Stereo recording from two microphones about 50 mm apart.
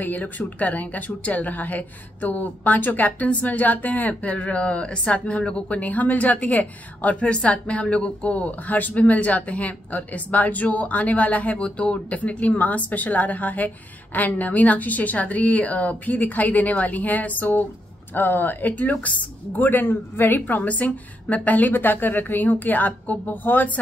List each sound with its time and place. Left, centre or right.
0.0 s a woman's voice: left
11.5 s a woman's voice: centre; by 23.7 s left